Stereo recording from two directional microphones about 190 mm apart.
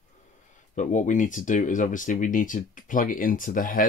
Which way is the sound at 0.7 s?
40° left (ahead or behind).